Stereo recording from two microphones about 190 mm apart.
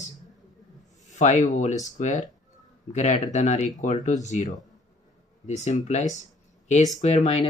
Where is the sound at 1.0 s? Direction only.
40° left (ahead or behind).